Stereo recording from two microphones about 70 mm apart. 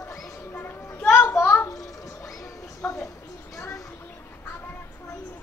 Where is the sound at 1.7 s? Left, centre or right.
Left.